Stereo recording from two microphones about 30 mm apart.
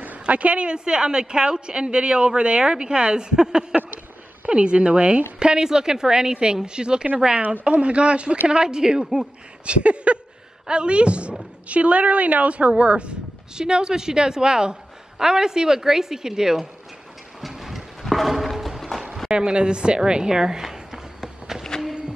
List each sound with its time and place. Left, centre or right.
0.0 s a sound: right
0.7 s speech: right
4.5 s a woman's voice: right
8.5 s a woman's voice: right
9.7 s a woman's voice: right
13.6 s a woman's voice: right
17.4 s train: centre
18.0 s clip-clop: centre
18.8 s music: centre
19.3 s a woman's voice: right
21.7 s a sound: left